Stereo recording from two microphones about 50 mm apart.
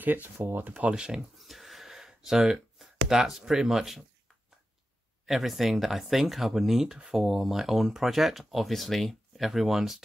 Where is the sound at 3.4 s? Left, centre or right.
Centre.